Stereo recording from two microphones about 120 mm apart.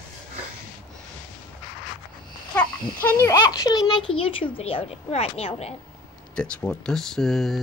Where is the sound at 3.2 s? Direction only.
30° left (ahead or behind); by 5.8 s 55° left (ahead or behind).